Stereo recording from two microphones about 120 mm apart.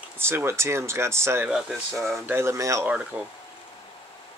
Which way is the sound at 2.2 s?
20° right (ahead or behind).